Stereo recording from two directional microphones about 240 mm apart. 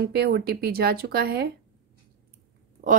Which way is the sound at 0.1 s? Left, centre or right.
Right.